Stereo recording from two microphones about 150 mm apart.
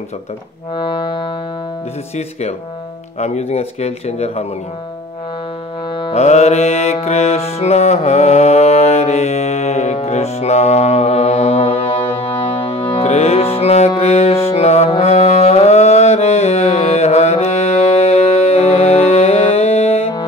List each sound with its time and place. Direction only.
0.7 s music: 30° left (ahead or behind)
3.2 s speech: 45° left (ahead or behind)
6.1 s music: 45° left (ahead or behind)